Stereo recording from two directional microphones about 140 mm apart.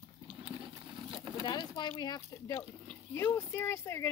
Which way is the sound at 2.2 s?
20° left (ahead or behind).